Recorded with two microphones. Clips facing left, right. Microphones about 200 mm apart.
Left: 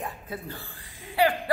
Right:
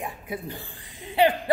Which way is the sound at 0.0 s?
15° right (ahead or behind).